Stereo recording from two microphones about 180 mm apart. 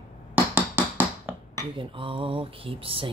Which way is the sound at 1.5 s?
30° right (ahead or behind).